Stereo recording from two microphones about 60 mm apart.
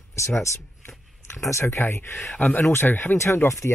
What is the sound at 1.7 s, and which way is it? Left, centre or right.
Speech, left.